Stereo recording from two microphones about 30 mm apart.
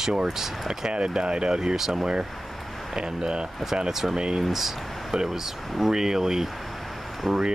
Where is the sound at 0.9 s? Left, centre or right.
Right.